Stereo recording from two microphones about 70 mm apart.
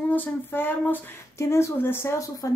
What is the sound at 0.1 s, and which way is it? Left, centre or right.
Speech, left.